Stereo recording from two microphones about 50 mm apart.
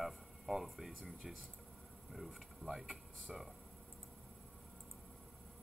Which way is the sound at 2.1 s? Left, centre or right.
Centre.